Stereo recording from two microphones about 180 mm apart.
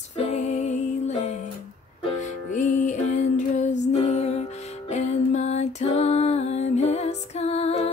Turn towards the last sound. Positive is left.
turn(degrees=35)  # may be behind; listen again after turning